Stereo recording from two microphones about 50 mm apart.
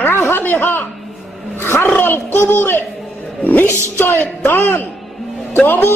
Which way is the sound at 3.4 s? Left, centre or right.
Left.